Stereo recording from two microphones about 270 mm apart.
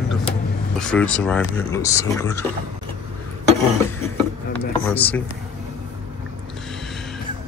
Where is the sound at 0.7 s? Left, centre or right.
Centre.